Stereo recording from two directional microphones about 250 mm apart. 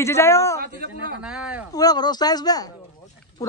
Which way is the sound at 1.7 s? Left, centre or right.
Centre.